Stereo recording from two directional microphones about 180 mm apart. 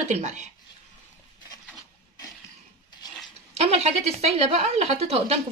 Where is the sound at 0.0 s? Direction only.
40° right (ahead or behind).